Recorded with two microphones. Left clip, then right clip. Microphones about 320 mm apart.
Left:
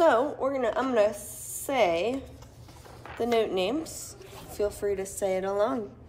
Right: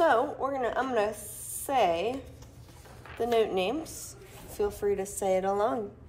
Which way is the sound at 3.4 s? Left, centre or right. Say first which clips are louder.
Left 1 dB; centre.